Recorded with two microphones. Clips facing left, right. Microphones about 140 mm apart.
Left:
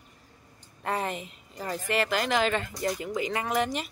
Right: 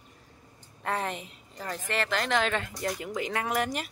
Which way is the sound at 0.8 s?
5° left (ahead or behind).